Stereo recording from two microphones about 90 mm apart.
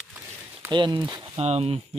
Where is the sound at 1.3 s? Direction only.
90° right.